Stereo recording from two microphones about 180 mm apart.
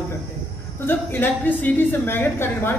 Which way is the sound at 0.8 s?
10° left (ahead or behind).